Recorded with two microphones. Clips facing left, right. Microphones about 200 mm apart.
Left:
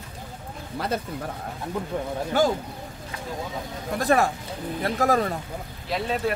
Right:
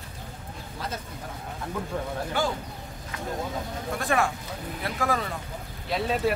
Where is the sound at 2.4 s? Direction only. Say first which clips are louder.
Left 7 dB; 40° left (ahead or behind).